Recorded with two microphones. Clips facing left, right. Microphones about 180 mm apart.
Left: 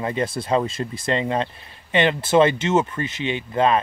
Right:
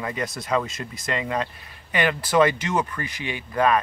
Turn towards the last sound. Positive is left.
turn(degrees=25)  # may be behind; listen again after turning